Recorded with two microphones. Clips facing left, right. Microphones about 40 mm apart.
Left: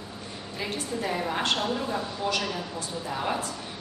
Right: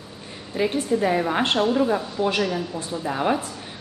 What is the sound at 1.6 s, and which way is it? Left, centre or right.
Speech, centre.